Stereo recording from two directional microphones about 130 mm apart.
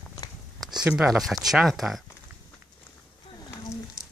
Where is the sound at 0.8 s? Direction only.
5° right (ahead or behind).